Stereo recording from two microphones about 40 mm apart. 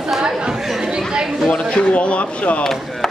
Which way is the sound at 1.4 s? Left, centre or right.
Left.